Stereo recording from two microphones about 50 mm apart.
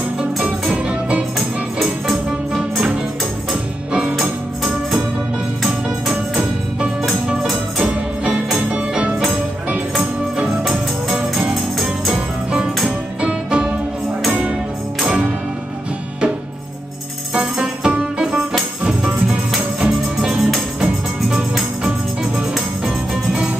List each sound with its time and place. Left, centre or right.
0.2 s music: right
1.3 s music: centre
5.6 s music: centre
7.8 s music: right
10.6 s music: centre
13.2 s music: right
15.0 s music: centre
17.3 s music: centre